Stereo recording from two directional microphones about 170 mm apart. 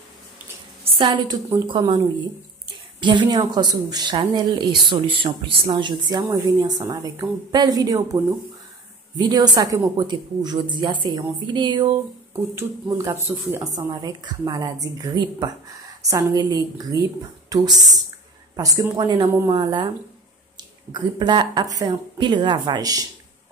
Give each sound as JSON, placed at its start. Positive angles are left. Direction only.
{"t": 0.8, "sound": "a woman's voice", "side_deg": -30}
{"t": 3.0, "sound": "a woman's voice", "side_deg": -25}
{"t": 12.5, "sound": "a woman's voice", "side_deg": -15}